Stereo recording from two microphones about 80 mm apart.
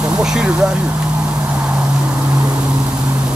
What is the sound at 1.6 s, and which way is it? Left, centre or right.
Vehicle, centre.